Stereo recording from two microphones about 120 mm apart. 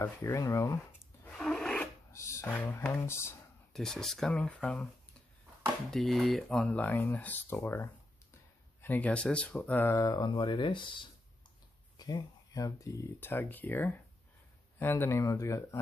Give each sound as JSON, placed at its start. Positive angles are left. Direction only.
{"t": 0.0, "sound": "speech", "side_deg": 25}
{"t": 1.2, "sound": "rub", "side_deg": 5}
{"t": 2.1, "sound": "music", "side_deg": 25}
{"t": 2.5, "sound": "speech", "side_deg": 15}
{"t": 3.7, "sound": "speech", "side_deg": 5}
{"t": 5.9, "sound": "speech", "side_deg": 5}
{"t": 9.9, "sound": "speech", "side_deg": 30}
{"t": 12.0, "sound": "speech", "side_deg": 30}